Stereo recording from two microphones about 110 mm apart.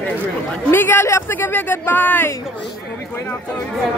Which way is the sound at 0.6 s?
20° left (ahead or behind).